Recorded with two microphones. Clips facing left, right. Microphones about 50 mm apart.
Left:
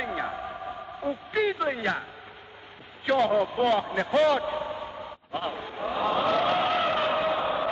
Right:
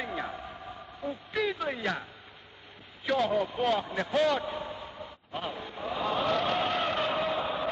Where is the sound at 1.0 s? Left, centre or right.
Centre.